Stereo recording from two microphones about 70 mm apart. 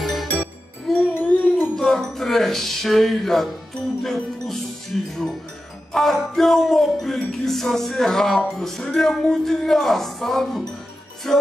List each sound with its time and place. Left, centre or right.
0.0 s music: centre
1.1 s music: left
1.8 s speech: centre
4.0 s music: centre